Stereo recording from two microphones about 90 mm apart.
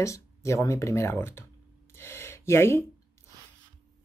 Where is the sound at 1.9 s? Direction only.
30° left (ahead or behind).